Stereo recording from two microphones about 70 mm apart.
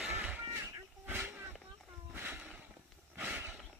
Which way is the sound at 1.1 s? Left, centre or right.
Right.